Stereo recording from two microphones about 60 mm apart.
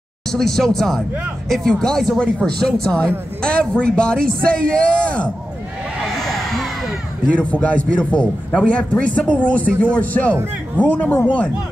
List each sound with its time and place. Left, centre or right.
0.3 s a man's voice: centre
6.0 s a sound: centre
7.5 s a man's voice: left